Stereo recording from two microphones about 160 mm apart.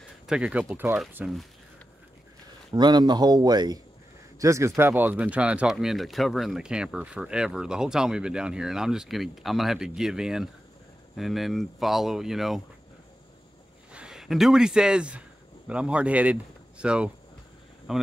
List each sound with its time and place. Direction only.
0.3 s speech: 5° right (ahead or behind)
2.7 s a man's voice: 25° right (ahead or behind); by 12.6 s centre (ahead or behind)
13.9 s a man's voice: 5° right (ahead or behind)